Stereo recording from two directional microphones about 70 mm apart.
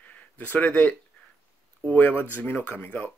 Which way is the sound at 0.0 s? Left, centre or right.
Left.